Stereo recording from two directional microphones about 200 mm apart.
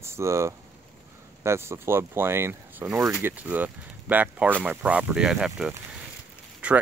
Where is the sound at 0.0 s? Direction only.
15° right (ahead or behind).